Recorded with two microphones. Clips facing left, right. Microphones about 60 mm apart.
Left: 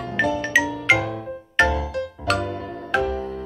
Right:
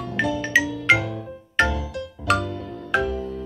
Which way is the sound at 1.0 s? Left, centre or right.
Left.